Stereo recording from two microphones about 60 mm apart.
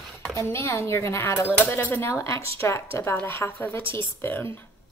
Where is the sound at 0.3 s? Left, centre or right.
Left.